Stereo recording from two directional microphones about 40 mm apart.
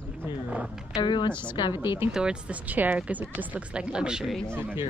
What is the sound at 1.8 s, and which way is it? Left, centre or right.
Speech, right.